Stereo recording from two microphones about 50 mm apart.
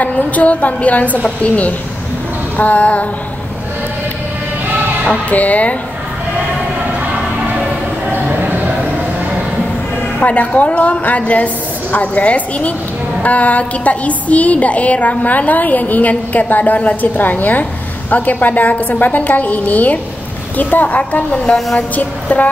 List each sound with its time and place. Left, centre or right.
0.0 s a woman's voice: left
2.5 s a woman's voice: left
5.3 s a woman's voice: left
8.1 s a sound: right
10.2 s a woman's voice: left
21.0 s a woman's voice: left